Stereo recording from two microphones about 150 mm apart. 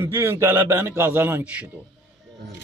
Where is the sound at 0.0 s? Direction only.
15° right (ahead or behind).